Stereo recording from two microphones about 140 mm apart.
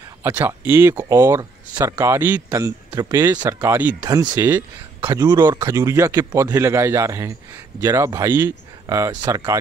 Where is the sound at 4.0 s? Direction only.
25° right (ahead or behind).